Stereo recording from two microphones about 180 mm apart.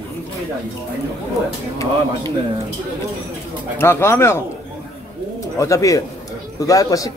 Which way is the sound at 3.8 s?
15° left (ahead or behind).